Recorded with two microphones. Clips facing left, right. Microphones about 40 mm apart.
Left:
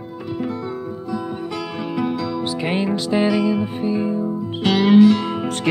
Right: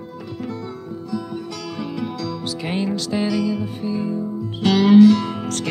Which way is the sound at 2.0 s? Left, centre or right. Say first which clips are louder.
Left 8 dB; centre.